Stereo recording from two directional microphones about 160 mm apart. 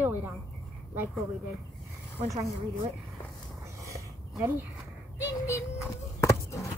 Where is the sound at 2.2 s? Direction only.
20° right (ahead or behind).